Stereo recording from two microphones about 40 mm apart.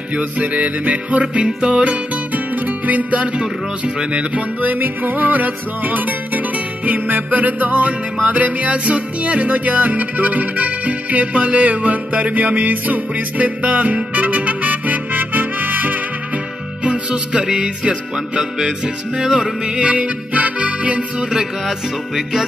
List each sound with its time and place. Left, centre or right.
0.1 s music: right
4.6 s music: right
16.8 s music: right
19.8 s music: right
21.3 s music: centre